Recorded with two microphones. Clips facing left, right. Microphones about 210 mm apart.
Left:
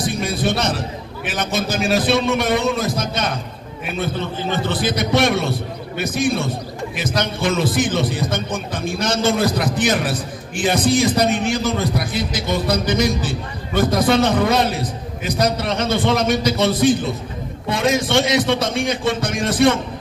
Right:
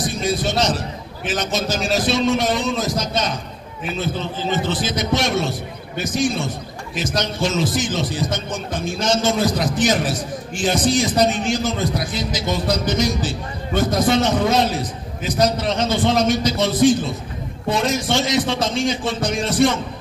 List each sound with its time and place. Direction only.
0.0 s a man's voice: 55° left (ahead or behind)